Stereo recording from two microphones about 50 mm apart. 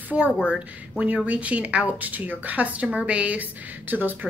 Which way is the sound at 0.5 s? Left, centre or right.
Right.